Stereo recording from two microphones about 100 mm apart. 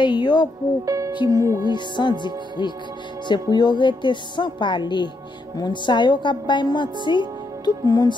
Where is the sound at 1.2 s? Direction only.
35° right (ahead or behind).